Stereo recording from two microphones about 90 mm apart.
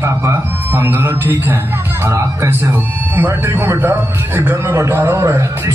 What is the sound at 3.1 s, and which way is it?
A man's voice, 25° right (ahead or behind).